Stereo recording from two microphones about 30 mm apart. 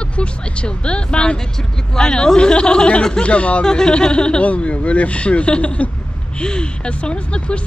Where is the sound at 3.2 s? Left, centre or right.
Left.